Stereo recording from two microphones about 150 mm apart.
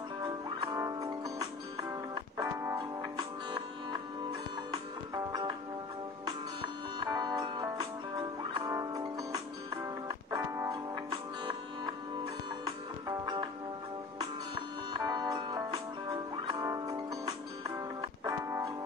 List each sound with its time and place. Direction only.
0.7 s music: 20° right (ahead or behind)
7.0 s music: 25° right (ahead or behind)
13.2 s music: 25° right (ahead or behind)